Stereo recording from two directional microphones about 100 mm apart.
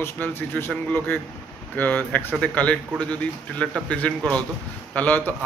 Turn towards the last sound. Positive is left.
turn(degrees=20)  # may be behind; listen again after turning